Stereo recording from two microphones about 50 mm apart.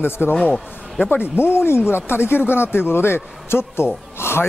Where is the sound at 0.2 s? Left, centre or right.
Left.